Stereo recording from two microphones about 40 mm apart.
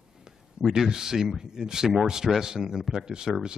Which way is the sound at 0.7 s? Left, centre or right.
Centre.